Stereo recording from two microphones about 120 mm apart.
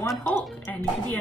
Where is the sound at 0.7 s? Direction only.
15° left (ahead or behind).